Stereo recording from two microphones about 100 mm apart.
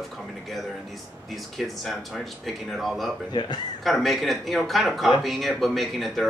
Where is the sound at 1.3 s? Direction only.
Centre (ahead or behind).